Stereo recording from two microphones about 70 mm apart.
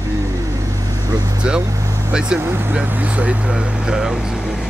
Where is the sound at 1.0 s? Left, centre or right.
Right.